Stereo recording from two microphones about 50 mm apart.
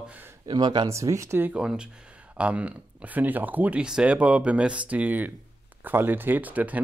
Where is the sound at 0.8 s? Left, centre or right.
Right.